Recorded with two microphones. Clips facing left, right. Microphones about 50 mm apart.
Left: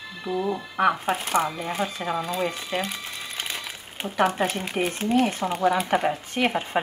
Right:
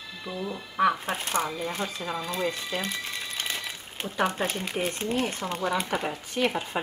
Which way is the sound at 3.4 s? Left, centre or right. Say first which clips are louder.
Even; centre.